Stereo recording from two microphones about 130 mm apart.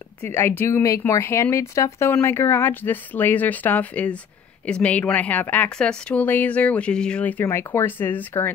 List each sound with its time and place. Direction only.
0.2 s speech: 15° left (ahead or behind)